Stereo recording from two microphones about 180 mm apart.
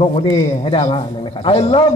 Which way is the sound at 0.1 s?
30° left (ahead or behind).